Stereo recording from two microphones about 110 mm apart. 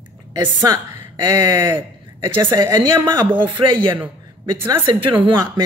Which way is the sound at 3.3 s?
45° right (ahead or behind).